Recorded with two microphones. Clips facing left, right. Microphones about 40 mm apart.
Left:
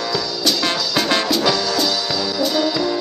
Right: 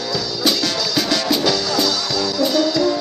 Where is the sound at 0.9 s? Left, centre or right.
Left.